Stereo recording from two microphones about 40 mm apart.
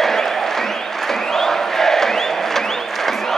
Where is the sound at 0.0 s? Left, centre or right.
Centre.